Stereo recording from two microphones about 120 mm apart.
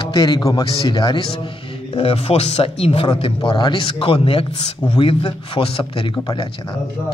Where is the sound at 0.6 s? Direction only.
50° left (ahead or behind).